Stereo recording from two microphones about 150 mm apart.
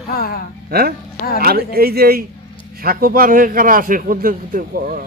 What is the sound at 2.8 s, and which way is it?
A man's voice, 75° right (ahead or behind).